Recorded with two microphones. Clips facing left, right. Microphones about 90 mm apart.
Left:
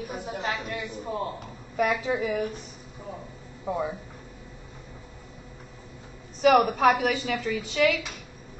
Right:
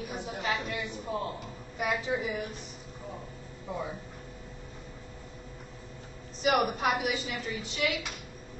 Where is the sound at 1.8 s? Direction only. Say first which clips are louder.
Left 5 dB; 60° left (ahead or behind).